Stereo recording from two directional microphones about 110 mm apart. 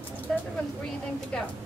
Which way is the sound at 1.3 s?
10° left (ahead or behind).